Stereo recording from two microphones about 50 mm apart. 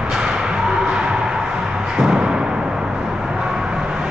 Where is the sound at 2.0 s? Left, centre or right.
Centre.